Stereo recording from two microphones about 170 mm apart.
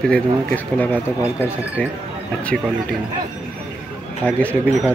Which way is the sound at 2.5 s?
5° left (ahead or behind).